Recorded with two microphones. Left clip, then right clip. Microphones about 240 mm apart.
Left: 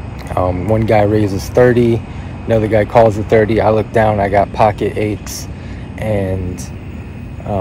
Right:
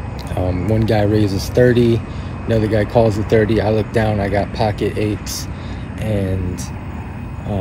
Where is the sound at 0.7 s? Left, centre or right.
Centre.